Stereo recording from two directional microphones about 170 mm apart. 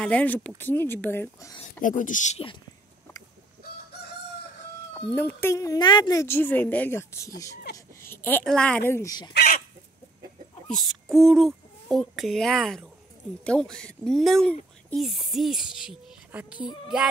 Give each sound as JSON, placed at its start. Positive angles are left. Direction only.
{"t": 0.0, "sound": "a woman's voice", "side_deg": 10}
{"t": 1.8, "sound": "speech", "side_deg": 50}
{"t": 4.9, "sound": "a woman's voice", "side_deg": 10}
{"t": 9.3, "sound": "chicken", "side_deg": 65}
{"t": 10.7, "sound": "a child's voice", "side_deg": 0}
{"t": 16.6, "sound": "a sound", "side_deg": 25}